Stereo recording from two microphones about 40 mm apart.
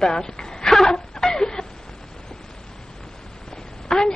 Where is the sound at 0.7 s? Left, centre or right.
Centre.